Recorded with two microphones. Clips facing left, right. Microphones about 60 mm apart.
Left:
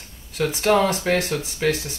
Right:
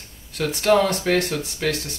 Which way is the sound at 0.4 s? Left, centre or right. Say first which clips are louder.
Even; centre.